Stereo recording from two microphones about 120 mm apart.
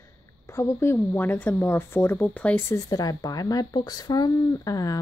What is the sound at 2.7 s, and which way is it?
Speech, 30° left (ahead or behind).